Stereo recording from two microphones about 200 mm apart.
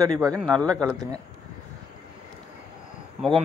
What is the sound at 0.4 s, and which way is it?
Speech, 5° left (ahead or behind).